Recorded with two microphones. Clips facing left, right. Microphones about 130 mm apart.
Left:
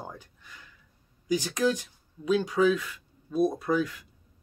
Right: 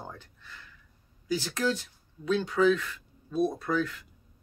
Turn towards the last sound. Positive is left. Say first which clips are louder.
# left 2 dB
turn(degrees=10)  # may be behind; listen again after turning